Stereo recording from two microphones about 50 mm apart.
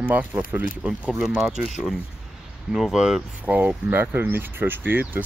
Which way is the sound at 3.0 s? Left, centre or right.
Centre.